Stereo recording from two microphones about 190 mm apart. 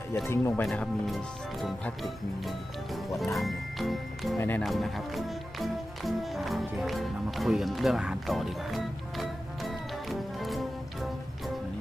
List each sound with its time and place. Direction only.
0.1 s speech: 15° left (ahead or behind)
3.2 s speech: centre (ahead or behind)